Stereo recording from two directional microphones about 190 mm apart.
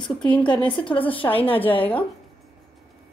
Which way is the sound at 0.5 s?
25° left (ahead or behind).